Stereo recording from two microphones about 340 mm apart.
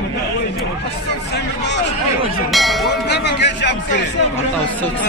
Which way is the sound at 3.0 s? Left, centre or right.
Left.